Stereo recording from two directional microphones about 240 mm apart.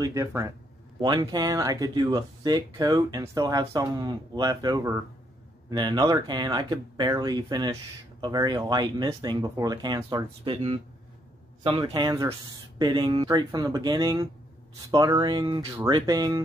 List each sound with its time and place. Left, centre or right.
0.0 s speech: centre